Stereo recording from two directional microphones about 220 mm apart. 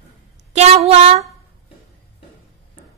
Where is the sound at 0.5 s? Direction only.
30° right (ahead or behind).